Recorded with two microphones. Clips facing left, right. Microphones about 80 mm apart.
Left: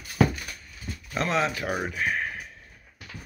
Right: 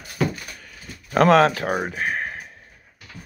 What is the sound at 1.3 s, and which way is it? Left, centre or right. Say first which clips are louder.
Speech: right 10 dB; right.